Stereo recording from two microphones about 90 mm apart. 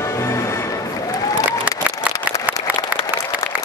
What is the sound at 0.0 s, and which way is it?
Music, 30° left (ahead or behind).